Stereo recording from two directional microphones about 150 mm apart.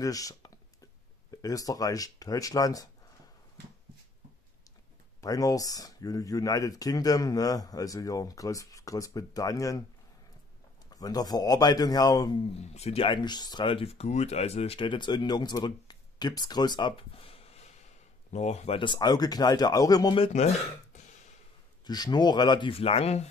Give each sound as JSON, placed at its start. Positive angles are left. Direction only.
{"t": 0.0, "sound": "a sound", "side_deg": 25}
{"t": 1.3, "sound": "speech", "side_deg": 25}
{"t": 5.2, "sound": "speech", "side_deg": 25}
{"t": 10.9, "sound": "speech", "side_deg": 25}
{"t": 12.5, "sound": "speech", "side_deg": 45}
{"t": 18.8, "sound": "speech", "side_deg": 30}
{"t": 20.9, "sound": "a sound", "side_deg": 55}
{"t": 21.8, "sound": "speech", "side_deg": 25}